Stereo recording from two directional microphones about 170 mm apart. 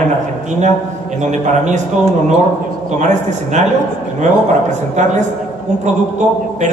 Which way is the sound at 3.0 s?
45° right (ahead or behind).